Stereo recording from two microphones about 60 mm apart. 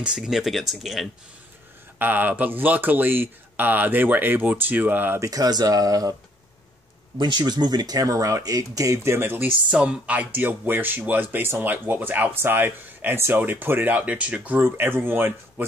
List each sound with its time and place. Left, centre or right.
0.0 s speech: centre
2.0 s speech: right
5.2 s speech: right
7.7 s speech: right
9.0 s speech: right
9.7 s speech: centre
14.6 s speech: right